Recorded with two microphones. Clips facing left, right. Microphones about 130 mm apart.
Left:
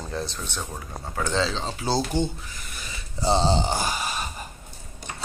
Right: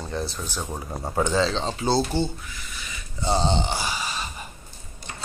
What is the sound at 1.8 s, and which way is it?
Speech, 10° left (ahead or behind).